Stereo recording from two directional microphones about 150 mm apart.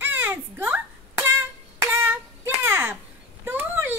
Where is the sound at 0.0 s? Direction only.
15° right (ahead or behind).